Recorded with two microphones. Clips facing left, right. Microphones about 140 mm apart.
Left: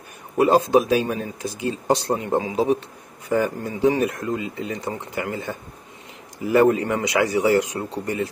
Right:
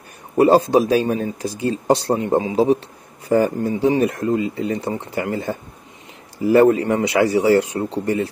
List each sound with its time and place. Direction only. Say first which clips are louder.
0.4 s speech: right 3 dB; 35° right (ahead or behind)